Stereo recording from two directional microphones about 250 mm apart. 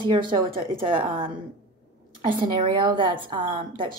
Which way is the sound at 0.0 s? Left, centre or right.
Centre.